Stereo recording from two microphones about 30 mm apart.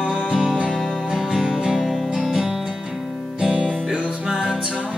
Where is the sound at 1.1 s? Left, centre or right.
Right.